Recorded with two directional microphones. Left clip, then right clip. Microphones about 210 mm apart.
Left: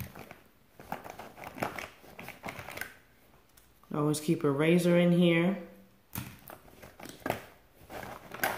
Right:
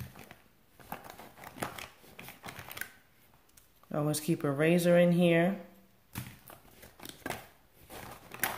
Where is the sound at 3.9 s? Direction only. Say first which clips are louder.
Left 2 dB; 30° right (ahead or behind).